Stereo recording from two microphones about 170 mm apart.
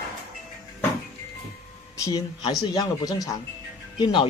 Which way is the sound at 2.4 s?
25° left (ahead or behind).